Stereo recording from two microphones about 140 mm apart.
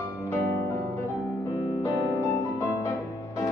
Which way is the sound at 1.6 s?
20° left (ahead or behind).